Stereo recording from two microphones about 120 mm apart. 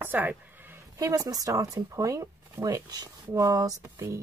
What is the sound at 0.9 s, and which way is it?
Speech, 30° right (ahead or behind).